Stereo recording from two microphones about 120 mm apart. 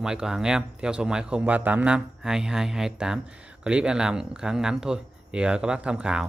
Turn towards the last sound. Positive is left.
turn(degrees=-10)  # may be behind; listen again after turning